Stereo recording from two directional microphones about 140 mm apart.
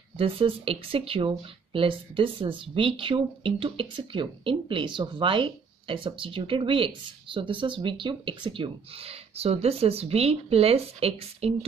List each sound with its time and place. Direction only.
0.2 s speech: 40° right (ahead or behind)